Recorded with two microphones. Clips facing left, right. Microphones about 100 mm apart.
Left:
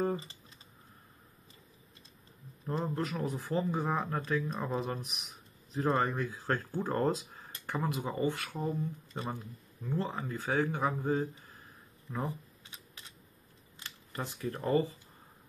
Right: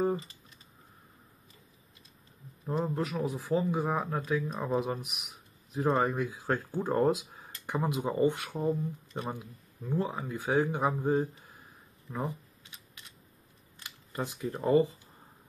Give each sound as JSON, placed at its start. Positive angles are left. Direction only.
{"t": 2.6, "sound": "speech", "side_deg": -5}
{"t": 13.8, "sound": "speech", "side_deg": -15}